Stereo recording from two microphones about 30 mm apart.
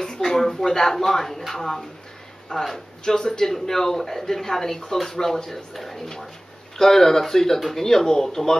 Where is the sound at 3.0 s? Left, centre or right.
Centre.